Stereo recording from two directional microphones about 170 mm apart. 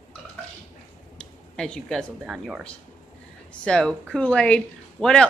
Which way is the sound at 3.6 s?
5° left (ahead or behind).